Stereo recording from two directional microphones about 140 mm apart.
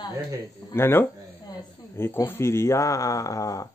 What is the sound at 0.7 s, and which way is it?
Speech, 15° left (ahead or behind).